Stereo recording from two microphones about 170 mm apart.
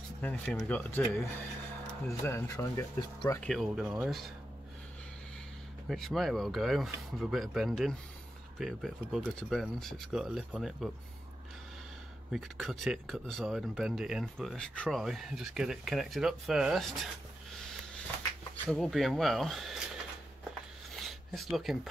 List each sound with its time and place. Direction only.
0.2 s speech: 5° left (ahead or behind)
2.2 s speech: 15° left (ahead or behind)
3.3 s speech: centre (ahead or behind)
5.9 s speech: centre (ahead or behind)
12.3 s speech: centre (ahead or behind)
18.7 s speech: centre (ahead or behind)
20.9 s a sound: centre (ahead or behind)